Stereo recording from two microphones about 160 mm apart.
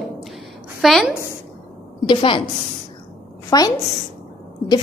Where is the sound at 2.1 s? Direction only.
35° left (ahead or behind).